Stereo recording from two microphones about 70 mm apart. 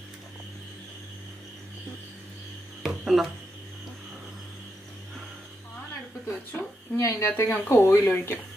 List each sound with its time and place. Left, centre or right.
2.8 s didgeridoo: centre
6.2 s speech: left